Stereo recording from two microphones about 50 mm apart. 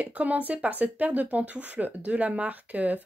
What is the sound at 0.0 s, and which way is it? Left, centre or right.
Speech, right.